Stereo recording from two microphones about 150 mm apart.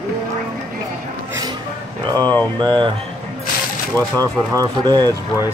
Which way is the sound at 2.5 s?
30° right (ahead or behind).